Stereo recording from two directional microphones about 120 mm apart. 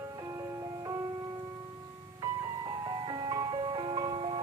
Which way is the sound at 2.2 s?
40° right (ahead or behind).